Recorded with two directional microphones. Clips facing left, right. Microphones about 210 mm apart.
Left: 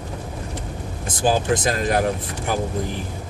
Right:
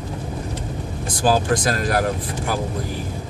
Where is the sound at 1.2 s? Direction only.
20° left (ahead or behind).